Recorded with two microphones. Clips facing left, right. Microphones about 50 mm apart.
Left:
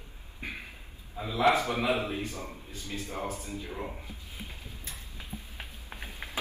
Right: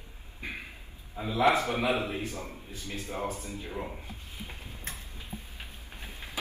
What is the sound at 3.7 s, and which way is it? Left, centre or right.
Speech, centre.